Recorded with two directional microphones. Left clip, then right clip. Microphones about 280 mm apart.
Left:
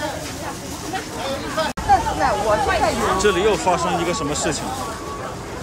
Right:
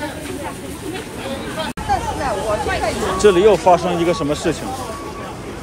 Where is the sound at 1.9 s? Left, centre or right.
Left.